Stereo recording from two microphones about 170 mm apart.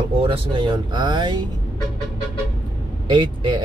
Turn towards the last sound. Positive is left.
turn(degrees=-30)  # may be behind; listen again after turning